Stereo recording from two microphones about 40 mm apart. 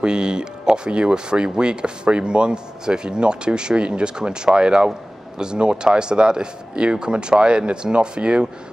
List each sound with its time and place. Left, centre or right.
0.0 s speech: right